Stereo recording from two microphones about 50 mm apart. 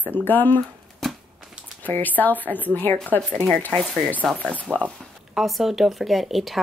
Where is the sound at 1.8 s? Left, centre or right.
Left.